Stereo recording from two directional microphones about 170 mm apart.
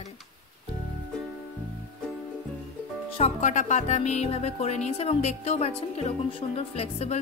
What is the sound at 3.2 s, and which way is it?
Music, 45° left (ahead or behind).